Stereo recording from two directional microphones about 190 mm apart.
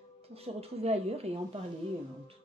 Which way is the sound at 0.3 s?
30° right (ahead or behind).